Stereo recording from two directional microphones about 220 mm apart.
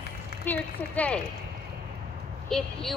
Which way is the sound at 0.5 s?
5° left (ahead or behind).